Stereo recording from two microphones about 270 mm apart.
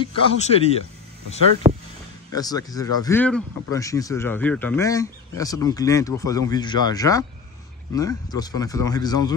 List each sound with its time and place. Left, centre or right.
0.0 s a man's voice: left
1.6 s a sound: right
2.3 s speech: centre